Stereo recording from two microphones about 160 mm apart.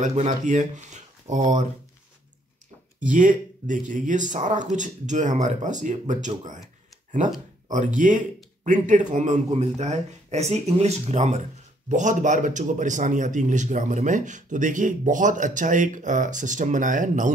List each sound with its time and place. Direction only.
0.0 s speech: 45° right (ahead or behind)
3.0 s speech: 55° right (ahead or behind)
7.7 s speech: 55° right (ahead or behind)